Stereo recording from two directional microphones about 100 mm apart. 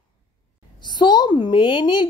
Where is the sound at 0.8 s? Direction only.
45° left (ahead or behind).